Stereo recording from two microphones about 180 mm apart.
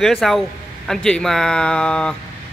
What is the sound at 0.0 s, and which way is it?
Speech, centre (ahead or behind).